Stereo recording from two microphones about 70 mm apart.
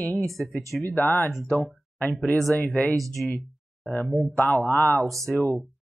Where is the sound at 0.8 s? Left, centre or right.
Left.